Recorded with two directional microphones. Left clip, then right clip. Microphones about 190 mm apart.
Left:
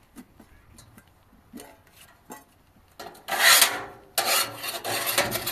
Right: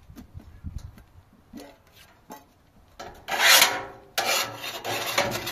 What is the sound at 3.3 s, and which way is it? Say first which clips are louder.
Filing: right 1 dB; centre (ahead or behind).